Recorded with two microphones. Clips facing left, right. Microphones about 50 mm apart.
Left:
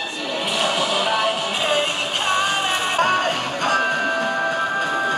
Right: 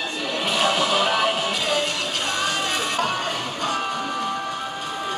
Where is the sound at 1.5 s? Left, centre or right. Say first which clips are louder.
Left 3 dB; left.